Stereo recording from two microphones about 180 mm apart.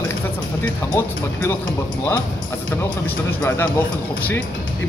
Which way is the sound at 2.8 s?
15° left (ahead or behind).